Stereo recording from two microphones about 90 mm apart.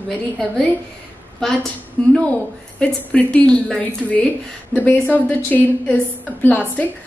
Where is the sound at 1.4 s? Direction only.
5° left (ahead or behind).